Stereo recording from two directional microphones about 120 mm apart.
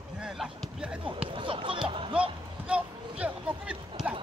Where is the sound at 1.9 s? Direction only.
45° right (ahead or behind).